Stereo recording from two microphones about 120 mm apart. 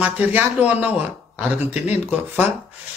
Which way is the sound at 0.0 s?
10° right (ahead or behind).